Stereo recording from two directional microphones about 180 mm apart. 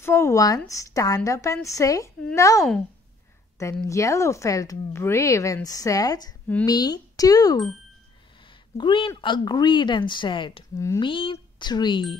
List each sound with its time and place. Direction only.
0.0 s speech: 15° left (ahead or behind)
3.8 s speech: 15° left (ahead or behind)
8.7 s speech: 25° left (ahead or behind)